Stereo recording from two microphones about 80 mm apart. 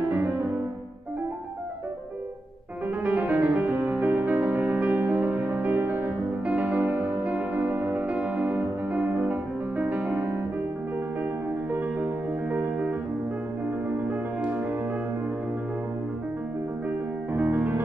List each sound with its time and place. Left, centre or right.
3.0 s music: centre
11.7 s music: right
13.8 s music: centre
17.3 s music: right